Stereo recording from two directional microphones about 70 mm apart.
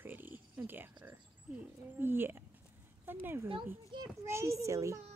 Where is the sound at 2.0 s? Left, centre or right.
Right.